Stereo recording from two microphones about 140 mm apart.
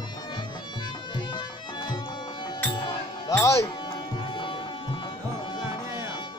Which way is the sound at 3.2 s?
20° left (ahead or behind).